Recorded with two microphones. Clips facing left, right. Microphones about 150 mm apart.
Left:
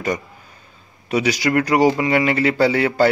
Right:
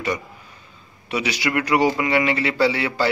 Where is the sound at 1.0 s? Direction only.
40° left (ahead or behind).